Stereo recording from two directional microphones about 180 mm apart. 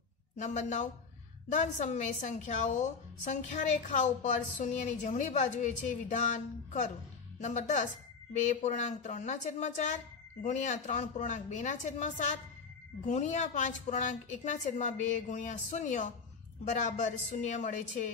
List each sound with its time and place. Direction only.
0.4 s a woman's voice: 40° left (ahead or behind)